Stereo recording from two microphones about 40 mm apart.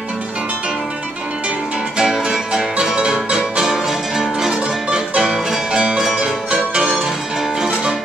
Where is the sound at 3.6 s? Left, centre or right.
Centre.